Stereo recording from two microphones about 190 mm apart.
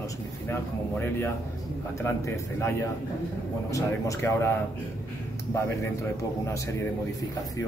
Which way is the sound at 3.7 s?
15° left (ahead or behind).